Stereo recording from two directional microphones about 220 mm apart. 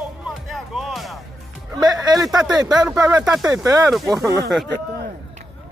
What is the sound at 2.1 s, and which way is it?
Speech, 20° right (ahead or behind).